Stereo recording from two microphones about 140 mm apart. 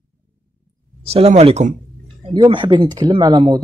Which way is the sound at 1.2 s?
45° right (ahead or behind).